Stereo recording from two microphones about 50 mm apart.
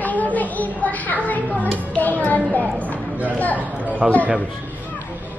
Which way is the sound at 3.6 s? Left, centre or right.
Right.